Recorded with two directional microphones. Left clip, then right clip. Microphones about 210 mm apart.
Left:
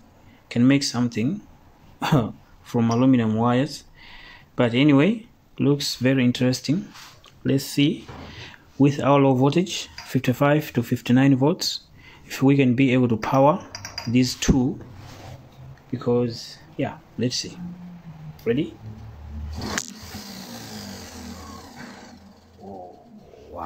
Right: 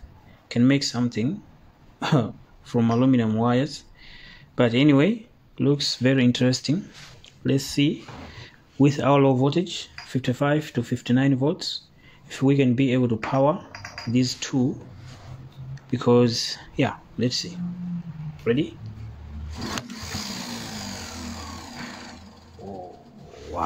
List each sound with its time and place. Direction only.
0.5 s speech: centre (ahead or behind)
8.7 s speech: 5° right (ahead or behind)
15.9 s speech: 20° right (ahead or behind)
17.2 s speech: centre (ahead or behind)